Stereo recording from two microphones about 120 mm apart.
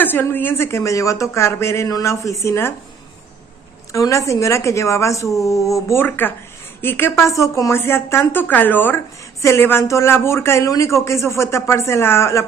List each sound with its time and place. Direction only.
0.0 s a woman's voice: 15° left (ahead or behind)
3.9 s a woman's voice: 25° left (ahead or behind)